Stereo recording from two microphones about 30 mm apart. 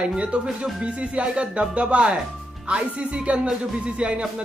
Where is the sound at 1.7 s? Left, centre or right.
Right.